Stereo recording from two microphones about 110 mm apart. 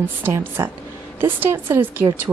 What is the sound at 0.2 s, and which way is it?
A woman's voice, 20° right (ahead or behind).